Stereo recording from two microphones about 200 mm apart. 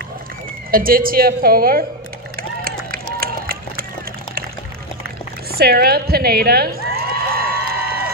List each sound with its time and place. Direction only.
0.7 s a woman's voice: 45° right (ahead or behind)
2.6 s run: 45° right (ahead or behind)
5.6 s a woman's voice: 50° right (ahead or behind)
6.9 s a sound: 50° right (ahead or behind)